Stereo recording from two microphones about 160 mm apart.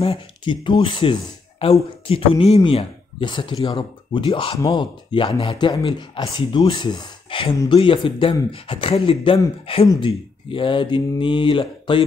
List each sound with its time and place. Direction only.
0.0 s speech: 35° left (ahead or behind)